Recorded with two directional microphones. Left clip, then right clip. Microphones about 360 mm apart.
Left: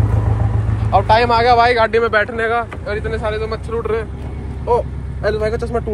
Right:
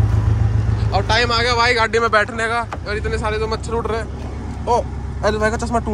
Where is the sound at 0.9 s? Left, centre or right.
Centre.